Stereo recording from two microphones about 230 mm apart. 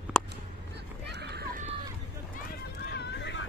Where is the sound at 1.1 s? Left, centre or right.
Right.